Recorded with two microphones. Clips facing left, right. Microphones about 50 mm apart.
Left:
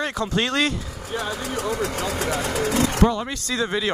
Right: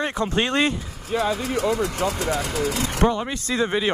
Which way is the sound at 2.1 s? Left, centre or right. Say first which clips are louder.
Even; left.